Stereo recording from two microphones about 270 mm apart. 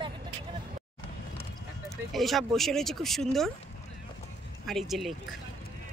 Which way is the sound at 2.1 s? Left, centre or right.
Centre.